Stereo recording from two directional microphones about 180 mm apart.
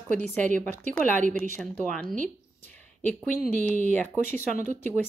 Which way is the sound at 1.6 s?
Centre (ahead or behind).